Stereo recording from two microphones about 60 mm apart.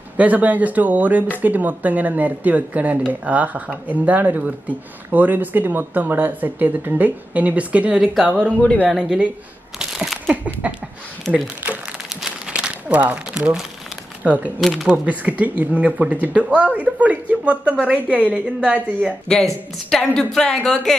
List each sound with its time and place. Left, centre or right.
0.2 s speech: right
8.3 s speech: centre
9.8 s a sound: centre
10.2 s speech: right
12.1 s crumpling: centre
12.5 s speech: right
14.6 s speech: centre
14.9 s speech: right
19.2 s a woman's voice: centre